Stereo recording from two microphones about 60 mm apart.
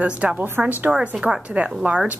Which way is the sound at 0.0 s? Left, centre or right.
Centre.